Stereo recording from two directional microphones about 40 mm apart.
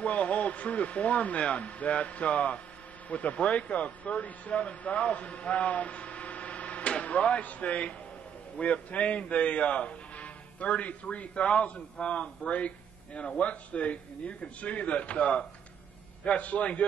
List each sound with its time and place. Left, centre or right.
0.0 s a man's voice: left